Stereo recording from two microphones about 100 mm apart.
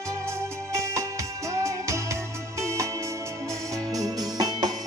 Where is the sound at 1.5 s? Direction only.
30° right (ahead or behind).